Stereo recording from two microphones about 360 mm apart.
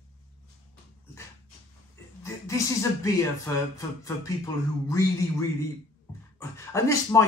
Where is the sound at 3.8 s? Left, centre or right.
Centre.